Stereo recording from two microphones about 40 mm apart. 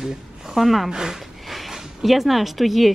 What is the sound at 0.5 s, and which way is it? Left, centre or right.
Speech, centre.